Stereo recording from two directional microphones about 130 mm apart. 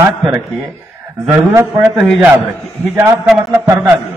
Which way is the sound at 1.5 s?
20° right (ahead or behind).